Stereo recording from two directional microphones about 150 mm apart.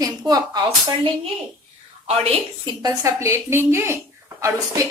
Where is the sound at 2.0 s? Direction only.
40° right (ahead or behind).